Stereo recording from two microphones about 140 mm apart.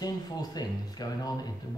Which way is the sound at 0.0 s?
30° left (ahead or behind).